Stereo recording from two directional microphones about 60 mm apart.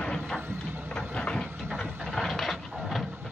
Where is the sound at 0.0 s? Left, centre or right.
Centre.